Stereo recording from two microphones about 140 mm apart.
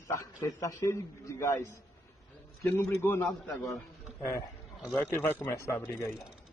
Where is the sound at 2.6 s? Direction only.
15° left (ahead or behind).